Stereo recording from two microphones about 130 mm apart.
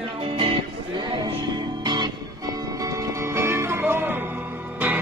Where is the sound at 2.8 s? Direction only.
25° right (ahead or behind).